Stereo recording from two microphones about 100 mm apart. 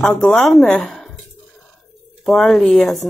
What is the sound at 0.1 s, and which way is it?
Speech, 10° left (ahead or behind).